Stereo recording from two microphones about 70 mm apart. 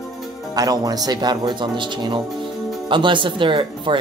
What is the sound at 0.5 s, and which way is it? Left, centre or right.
Speech, right.